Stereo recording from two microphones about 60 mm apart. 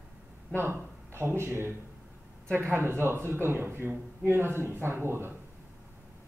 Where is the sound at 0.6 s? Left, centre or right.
Right.